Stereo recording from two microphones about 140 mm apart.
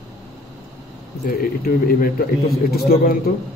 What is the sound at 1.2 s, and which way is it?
Speech, 90° left.